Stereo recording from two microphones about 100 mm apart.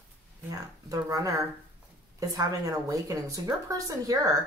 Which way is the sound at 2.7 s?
35° right (ahead or behind).